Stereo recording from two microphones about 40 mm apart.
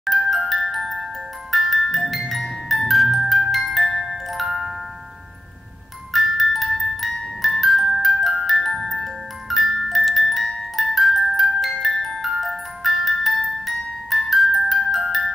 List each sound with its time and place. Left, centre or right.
0.0 s glockenspiel: centre
1.5 s music: centre
3.5 s glockenspiel: centre
6.1 s music: centre